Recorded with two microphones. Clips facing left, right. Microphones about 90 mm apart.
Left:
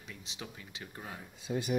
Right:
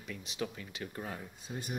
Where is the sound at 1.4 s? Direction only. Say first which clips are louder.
Left 7 dB; 90° left.